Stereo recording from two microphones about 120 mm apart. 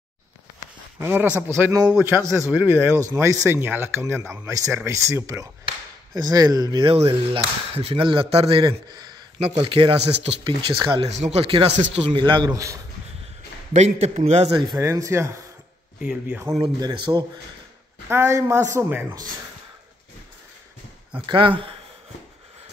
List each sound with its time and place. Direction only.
0.9 s speech: 20° right (ahead or behind); by 6.9 s 35° right (ahead or behind)
6.9 s speech: 55° right (ahead or behind)
11.1 s speech: 60° right (ahead or behind); by 12.4 s 40° right (ahead or behind)
12.5 s speech: 25° right (ahead or behind)
13.7 s a man's voice: 60° right (ahead or behind)
14.8 s speech: 25° right (ahead or behind)
16.0 s speech: 10° right (ahead or behind)
16.5 s speech: 40° right (ahead or behind)
18.0 s speech: 25° right (ahead or behind)
18.8 s speech: 15° right (ahead or behind)
21.3 s speech: 45° right (ahead or behind)